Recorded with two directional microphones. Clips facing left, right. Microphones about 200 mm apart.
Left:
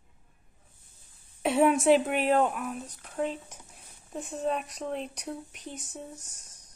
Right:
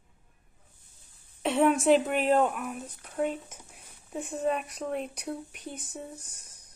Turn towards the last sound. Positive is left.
turn(degrees=-5)  # may be behind; listen again after turning